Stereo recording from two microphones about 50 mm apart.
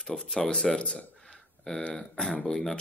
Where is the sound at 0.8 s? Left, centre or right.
Left.